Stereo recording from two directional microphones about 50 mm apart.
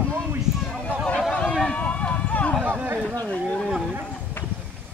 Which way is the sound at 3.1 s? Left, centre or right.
Left.